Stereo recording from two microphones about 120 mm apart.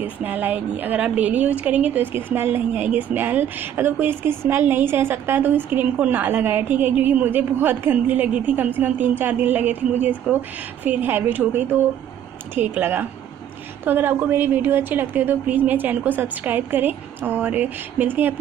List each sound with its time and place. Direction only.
0.0 s speech: 15° right (ahead or behind)